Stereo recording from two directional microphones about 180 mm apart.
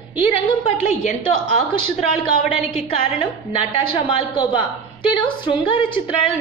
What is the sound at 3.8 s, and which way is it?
Speech, 30° left (ahead or behind).